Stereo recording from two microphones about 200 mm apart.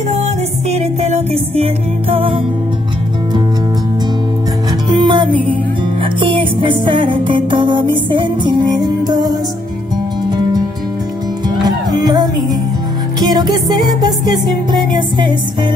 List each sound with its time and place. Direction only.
0.7 s music: 35° right (ahead or behind)
4.8 s music: 20° right (ahead or behind)
11.6 s music: 20° right (ahead or behind)